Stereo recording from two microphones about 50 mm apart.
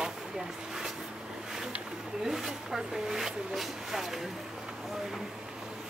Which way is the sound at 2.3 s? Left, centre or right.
Centre.